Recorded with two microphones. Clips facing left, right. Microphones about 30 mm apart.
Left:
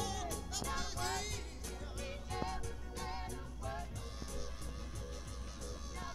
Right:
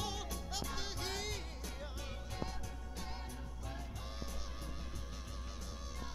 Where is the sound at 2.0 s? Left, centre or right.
Centre.